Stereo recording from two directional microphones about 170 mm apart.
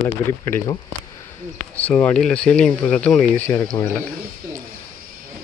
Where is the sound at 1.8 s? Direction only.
10° left (ahead or behind).